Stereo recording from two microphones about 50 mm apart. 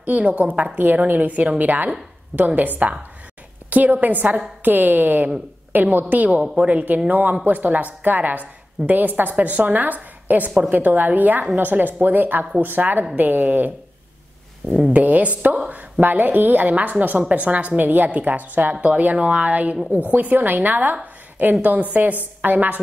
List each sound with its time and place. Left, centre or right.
0.0 s a woman's voice: right
14.7 s a woman's voice: right